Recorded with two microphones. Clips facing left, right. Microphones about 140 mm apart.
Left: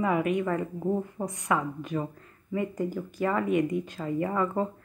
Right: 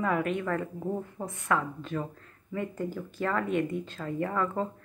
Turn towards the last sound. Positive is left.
turn(degrees=10)  # may be behind; listen again after turning